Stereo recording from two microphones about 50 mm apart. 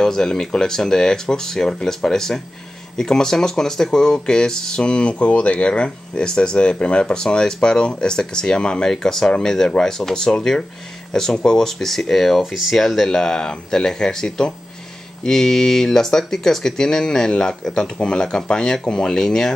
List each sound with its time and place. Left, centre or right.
0.0 s speech: centre